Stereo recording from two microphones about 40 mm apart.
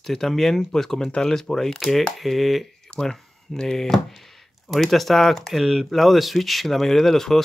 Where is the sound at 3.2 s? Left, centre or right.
Centre.